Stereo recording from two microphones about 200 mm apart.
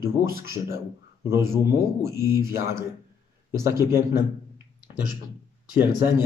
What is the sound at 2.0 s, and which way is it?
Speech, 15° right (ahead or behind).